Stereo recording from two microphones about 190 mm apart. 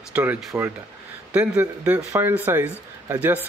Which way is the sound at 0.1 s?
5° right (ahead or behind).